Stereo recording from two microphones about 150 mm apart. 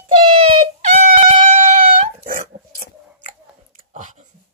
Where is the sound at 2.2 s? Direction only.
65° right (ahead or behind).